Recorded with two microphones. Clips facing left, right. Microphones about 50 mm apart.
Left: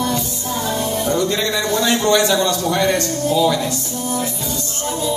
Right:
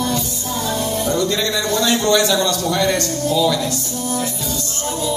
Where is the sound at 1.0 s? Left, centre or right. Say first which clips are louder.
Left 1 dB; centre.